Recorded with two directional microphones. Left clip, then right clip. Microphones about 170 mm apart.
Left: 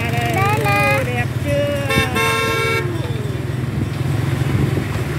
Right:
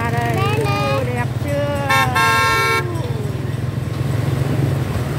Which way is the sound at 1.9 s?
50° right (ahead or behind).